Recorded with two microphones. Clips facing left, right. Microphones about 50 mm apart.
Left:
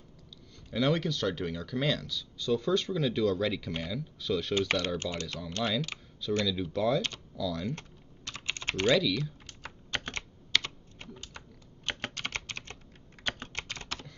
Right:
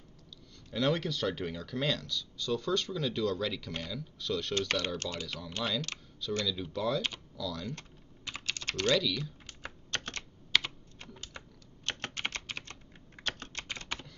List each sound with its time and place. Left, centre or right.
0.7 s speech: centre
5.1 s speech: centre
8.5 s typing: left
8.8 s speech: centre
9.8 s typing: centre
10.5 s computer keyboard: centre
11.8 s typing: centre
12.5 s typing: centre
13.2 s typing: centre
13.7 s typing: centre